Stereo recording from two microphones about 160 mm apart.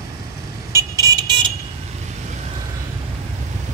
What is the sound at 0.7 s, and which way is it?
Vehicle, 25° right (ahead or behind).